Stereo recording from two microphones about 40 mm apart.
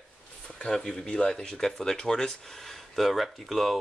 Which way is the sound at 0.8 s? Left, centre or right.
Centre.